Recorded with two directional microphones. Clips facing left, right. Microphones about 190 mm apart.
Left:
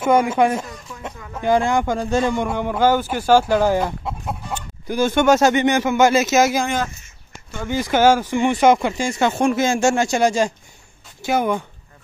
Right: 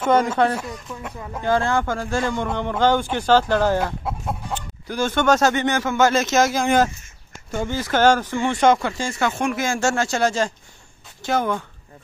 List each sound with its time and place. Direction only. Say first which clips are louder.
0.0 s speech: left 2 dB; 10° left (ahead or behind)
7.6 s speech: left 2 dB; 10° left (ahead or behind)
9.4 s speech: left 7 dB; 25° left (ahead or behind)